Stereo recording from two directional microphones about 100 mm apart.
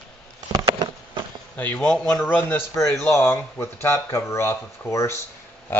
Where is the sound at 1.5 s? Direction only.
15° left (ahead or behind).